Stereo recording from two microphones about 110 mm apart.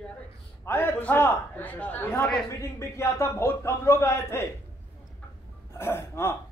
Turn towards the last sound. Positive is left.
turn(degrees=25)  # may be behind; listen again after turning